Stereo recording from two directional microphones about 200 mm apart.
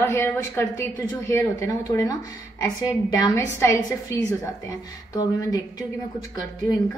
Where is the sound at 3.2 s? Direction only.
15° left (ahead or behind).